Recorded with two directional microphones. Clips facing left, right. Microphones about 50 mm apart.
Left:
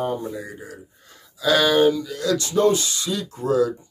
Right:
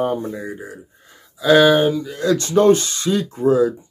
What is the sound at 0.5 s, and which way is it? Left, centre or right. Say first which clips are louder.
Speech: right 5 dB; right.